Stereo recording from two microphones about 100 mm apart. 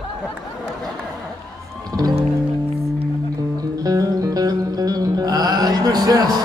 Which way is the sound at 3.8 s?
35° right (ahead or behind).